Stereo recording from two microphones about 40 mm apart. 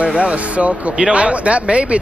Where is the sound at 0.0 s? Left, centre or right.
Right.